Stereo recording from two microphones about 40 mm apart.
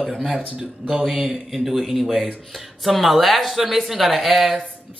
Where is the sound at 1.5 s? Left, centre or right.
Centre.